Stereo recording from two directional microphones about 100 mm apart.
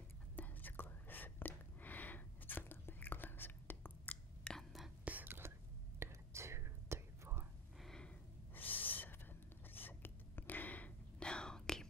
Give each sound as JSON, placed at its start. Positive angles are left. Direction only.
{"t": 0.4, "sound": "whispering", "side_deg": 20}
{"t": 4.6, "sound": "whispering", "side_deg": 0}
{"t": 5.0, "sound": "whispering", "side_deg": -20}
{"t": 7.8, "sound": "gasp", "side_deg": 5}
{"t": 8.5, "sound": "owl", "side_deg": 20}
{"t": 9.7, "sound": "whispering", "side_deg": 20}